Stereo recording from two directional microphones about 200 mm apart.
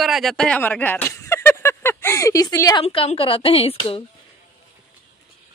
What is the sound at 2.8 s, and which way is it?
A woman's voice, 30° left (ahead or behind).